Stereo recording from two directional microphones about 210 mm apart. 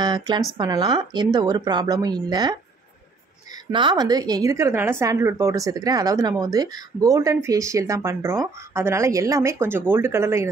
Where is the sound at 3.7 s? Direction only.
20° right (ahead or behind).